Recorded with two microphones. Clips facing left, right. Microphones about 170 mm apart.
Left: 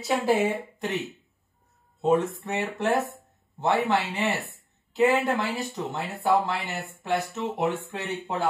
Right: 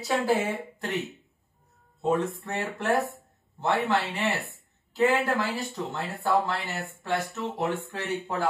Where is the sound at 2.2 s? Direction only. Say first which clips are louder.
Even; centre (ahead or behind).